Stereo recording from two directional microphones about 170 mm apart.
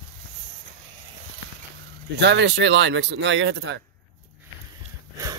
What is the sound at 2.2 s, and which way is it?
Speech, 90° right.